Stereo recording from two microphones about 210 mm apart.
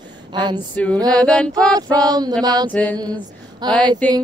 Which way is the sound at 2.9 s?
20° right (ahead or behind).